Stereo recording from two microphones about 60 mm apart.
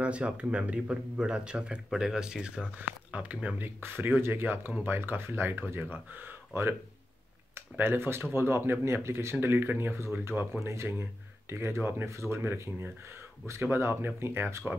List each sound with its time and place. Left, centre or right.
0.0 s speech: right
3.5 s speech: right
10.6 s speech: right
12.1 s speech: right
13.5 s speech: right